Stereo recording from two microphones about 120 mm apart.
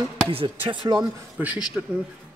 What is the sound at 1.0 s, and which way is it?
Speech, 10° right (ahead or behind).